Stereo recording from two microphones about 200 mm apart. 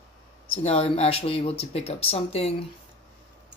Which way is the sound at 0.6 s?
35° left (ahead or behind).